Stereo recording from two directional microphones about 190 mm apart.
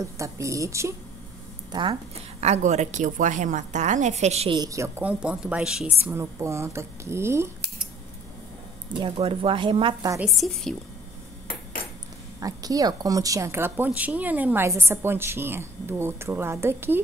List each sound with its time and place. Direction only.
0.0 s a woman's voice: 15° right (ahead or behind)
2.4 s a woman's voice: 35° right (ahead or behind)
4.6 s a woman's voice: 15° right (ahead or behind)
6.0 s a woman's voice: 15° right (ahead or behind)
8.9 s speech: 25° right (ahead or behind)
10.2 s a woman's voice: centre (ahead or behind)
12.4 s a woman's voice: 20° right (ahead or behind)